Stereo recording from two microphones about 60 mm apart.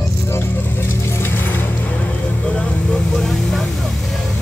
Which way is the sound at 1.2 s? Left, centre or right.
Left.